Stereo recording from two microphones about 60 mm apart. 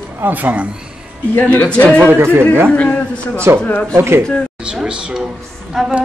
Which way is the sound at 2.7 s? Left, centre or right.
Left.